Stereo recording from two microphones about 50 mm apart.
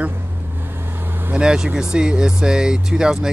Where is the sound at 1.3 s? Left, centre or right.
Centre.